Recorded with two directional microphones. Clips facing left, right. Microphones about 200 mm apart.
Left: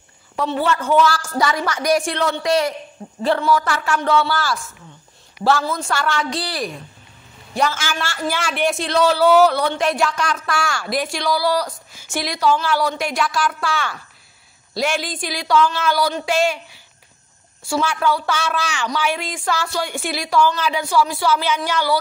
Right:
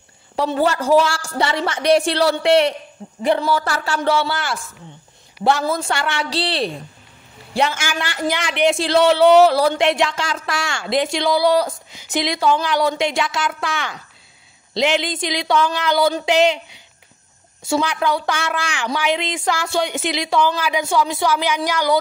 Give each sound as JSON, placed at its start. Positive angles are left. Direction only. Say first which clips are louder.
{"t": 0.5, "sound": "speech", "louder": "right 3 dB", "side_deg": -40}
{"t": 7.7, "sound": "speech", "louder": "right 1 dB", "side_deg": -15}
{"t": 8.7, "sound": "a woman's voice", "louder": "right 2 dB", "side_deg": -30}
{"t": 20.8, "sound": "a woman's voice", "louder": "left 1 dB", "side_deg": -20}